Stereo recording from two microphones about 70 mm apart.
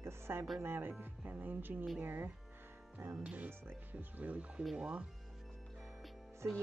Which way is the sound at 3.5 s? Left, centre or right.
Right.